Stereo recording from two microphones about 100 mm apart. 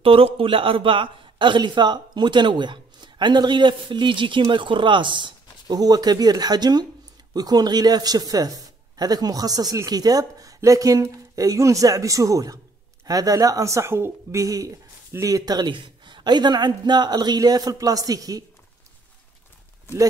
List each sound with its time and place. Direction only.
0.0 s a man's voice: 70° right (ahead or behind); by 18.4 s 35° right (ahead or behind)